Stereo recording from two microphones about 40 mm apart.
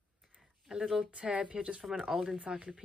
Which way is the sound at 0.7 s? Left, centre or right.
Centre.